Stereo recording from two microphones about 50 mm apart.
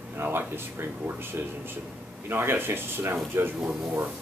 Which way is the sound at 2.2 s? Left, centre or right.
Right.